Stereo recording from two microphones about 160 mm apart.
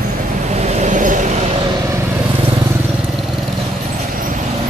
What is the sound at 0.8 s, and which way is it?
Vehicle, 50° right (ahead or behind).